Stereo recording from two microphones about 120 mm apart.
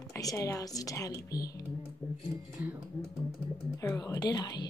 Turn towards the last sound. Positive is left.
turn(degrees=35)  # may be behind; listen again after turning